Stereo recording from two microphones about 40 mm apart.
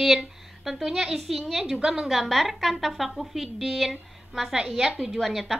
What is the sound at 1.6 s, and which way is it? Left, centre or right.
Speech, centre.